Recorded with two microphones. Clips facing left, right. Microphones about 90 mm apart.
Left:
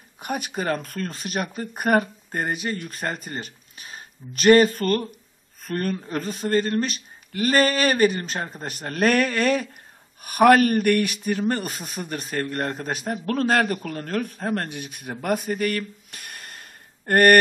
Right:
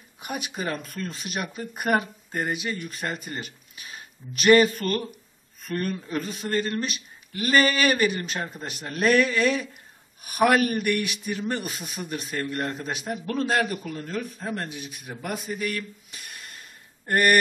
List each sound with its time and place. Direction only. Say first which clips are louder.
0.2 s a man's voice: left 4 dB; 45° left (ahead or behind)
13.4 s a man's voice: left 3 dB; 55° left (ahead or behind)
15.0 s a sound: left 7 dB; 55° left (ahead or behind)